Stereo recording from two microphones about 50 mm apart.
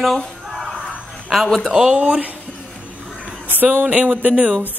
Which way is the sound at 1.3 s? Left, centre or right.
Centre.